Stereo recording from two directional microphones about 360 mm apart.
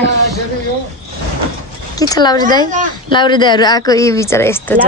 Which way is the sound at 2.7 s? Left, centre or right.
Right.